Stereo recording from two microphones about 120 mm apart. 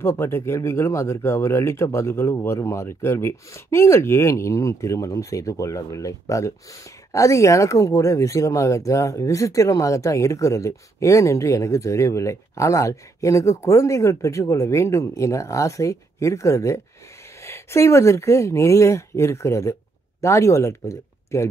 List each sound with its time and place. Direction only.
0.0 s speech: 20° left (ahead or behind)